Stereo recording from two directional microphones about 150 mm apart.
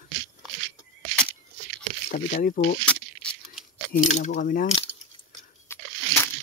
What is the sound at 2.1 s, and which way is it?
Speech, 65° left (ahead or behind).